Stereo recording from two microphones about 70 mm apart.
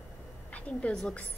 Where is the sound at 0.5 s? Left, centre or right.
Centre.